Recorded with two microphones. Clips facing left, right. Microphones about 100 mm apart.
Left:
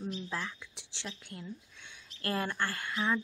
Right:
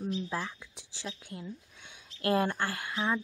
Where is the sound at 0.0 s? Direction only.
15° right (ahead or behind).